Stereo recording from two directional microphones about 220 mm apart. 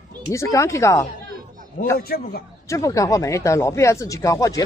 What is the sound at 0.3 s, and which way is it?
Speech, 15° left (ahead or behind).